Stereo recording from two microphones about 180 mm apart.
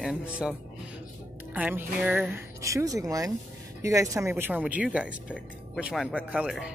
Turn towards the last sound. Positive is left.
turn(degrees=-5)  # may be behind; listen again after turning